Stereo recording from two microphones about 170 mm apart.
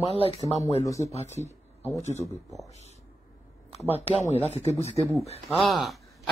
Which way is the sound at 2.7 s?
40° left (ahead or behind).